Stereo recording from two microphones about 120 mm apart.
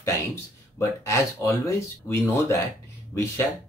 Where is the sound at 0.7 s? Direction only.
25° left (ahead or behind).